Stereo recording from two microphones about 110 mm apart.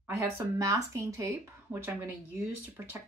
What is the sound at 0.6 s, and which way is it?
Speech, 30° right (ahead or behind).